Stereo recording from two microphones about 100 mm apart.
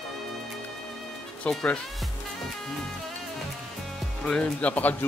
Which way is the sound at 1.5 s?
10° left (ahead or behind).